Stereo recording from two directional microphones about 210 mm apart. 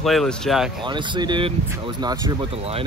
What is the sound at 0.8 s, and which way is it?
Speech, 20° right (ahead or behind).